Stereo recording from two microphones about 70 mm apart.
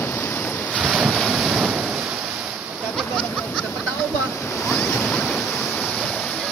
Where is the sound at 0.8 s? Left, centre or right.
Centre.